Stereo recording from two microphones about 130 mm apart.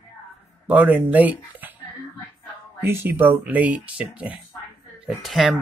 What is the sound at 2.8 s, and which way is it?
Speech, 20° right (ahead or behind).